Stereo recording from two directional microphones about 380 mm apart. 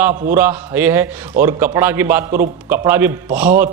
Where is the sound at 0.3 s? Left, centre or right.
Centre.